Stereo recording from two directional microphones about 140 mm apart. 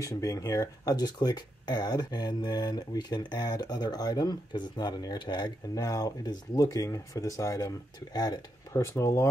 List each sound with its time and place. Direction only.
0.0 s speech: 25° left (ahead or behind)